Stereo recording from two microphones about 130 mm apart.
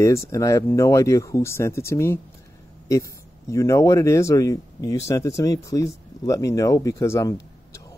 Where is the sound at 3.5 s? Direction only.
25° left (ahead or behind).